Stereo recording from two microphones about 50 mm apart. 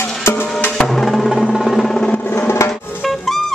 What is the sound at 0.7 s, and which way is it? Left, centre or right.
Music, centre.